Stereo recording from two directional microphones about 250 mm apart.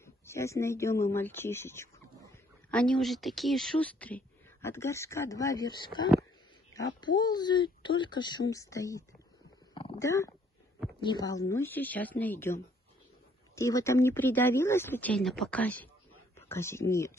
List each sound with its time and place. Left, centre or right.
0.0 s speech: centre
9.8 s a sound: centre
11.0 s speech: centre